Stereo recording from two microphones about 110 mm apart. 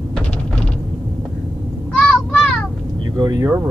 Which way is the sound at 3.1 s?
35° right (ahead or behind).